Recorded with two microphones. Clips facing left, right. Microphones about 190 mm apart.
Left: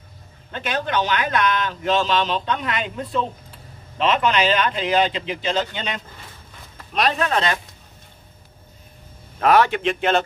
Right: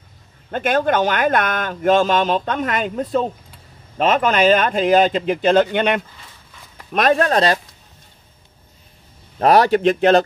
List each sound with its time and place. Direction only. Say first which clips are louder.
0.5 s a man's voice: right 8 dB; 50° right (ahead or behind)
6.9 s speech: right 5 dB; 50° right (ahead or behind)
9.4 s speech: right 4 dB; 35° right (ahead or behind)